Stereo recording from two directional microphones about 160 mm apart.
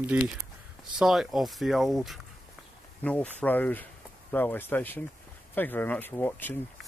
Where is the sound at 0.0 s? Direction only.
10° right (ahead or behind).